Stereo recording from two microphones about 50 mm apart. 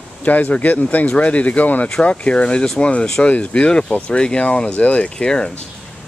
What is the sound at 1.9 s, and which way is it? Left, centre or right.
Speech, centre.